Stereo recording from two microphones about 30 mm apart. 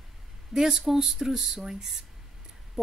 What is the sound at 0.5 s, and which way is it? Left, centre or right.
Speech, right.